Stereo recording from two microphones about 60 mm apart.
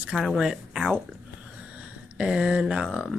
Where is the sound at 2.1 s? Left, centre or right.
Centre.